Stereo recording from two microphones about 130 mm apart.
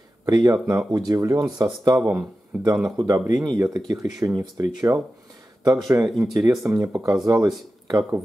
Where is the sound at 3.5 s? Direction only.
25° right (ahead or behind).